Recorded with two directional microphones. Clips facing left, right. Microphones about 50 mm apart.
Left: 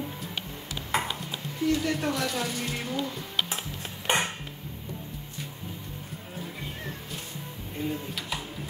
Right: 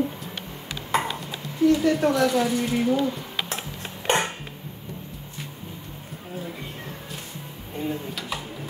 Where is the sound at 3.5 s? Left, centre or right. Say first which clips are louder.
Right 3 dB; right.